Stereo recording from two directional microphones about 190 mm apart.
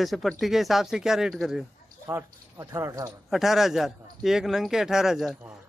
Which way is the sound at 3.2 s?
Centre (ahead or behind).